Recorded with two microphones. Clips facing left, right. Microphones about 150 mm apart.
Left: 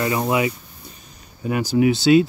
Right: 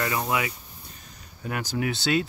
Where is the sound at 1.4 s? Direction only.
10° left (ahead or behind).